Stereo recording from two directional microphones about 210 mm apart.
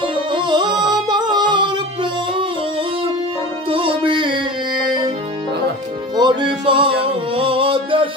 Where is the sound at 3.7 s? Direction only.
25° right (ahead or behind).